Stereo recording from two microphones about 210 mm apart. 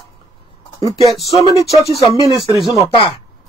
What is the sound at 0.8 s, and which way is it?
Speech, 25° left (ahead or behind).